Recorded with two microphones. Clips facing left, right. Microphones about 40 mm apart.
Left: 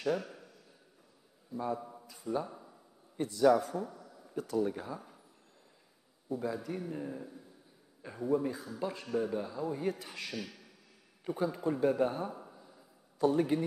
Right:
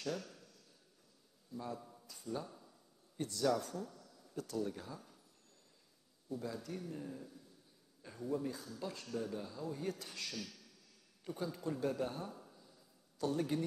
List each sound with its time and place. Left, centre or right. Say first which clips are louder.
0.0 s a sound: left 9 dB; centre
1.5 s speech: left 9 dB; left
6.2 s speech: left 7 dB; centre